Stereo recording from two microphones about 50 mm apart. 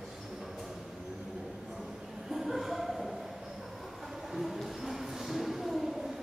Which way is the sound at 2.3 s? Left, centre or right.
Centre.